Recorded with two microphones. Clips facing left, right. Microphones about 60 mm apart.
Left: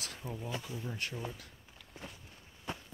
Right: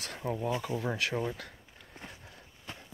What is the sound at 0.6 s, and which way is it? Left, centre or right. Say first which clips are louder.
Speech: right 8 dB; right.